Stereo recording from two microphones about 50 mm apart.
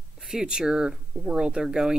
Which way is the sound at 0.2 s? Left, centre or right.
Centre.